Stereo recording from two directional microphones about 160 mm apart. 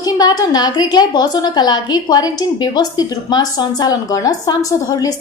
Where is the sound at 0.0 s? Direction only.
25° left (ahead or behind).